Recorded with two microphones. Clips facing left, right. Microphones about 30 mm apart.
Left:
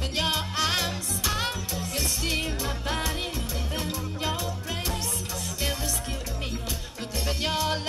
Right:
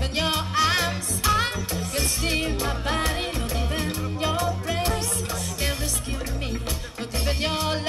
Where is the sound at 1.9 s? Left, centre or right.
Right.